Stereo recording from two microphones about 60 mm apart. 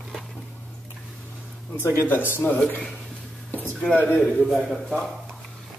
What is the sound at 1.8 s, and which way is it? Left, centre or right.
Speech, left.